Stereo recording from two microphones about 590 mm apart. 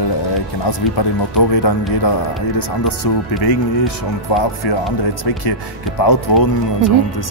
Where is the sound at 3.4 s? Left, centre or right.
Left.